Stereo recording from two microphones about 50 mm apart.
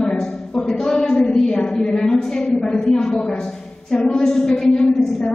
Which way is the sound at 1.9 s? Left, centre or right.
Centre.